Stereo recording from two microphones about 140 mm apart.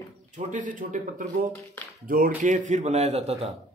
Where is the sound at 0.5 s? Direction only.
70° right (ahead or behind).